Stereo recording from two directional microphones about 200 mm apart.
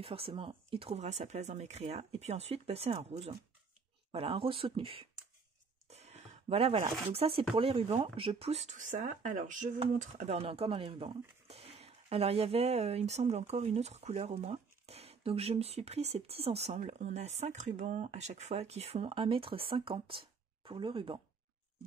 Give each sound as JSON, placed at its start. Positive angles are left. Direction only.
{"t": 0.0, "sound": "speech", "side_deg": -30}